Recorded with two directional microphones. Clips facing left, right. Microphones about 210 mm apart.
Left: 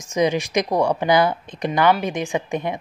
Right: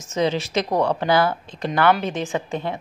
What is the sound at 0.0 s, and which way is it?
A woman's voice, 15° left (ahead or behind).